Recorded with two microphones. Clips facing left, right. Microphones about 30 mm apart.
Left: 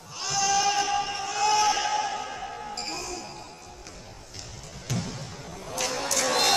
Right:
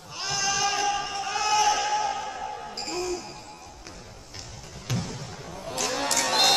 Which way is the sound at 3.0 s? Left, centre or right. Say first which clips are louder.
Right 5 dB; right.